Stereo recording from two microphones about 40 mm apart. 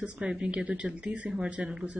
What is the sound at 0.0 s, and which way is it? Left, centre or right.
Speech, right.